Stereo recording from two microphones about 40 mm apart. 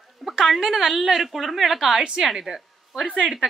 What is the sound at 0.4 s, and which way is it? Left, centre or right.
A woman's voice, centre.